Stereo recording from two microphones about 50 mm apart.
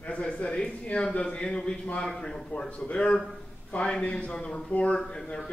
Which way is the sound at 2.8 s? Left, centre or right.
Left.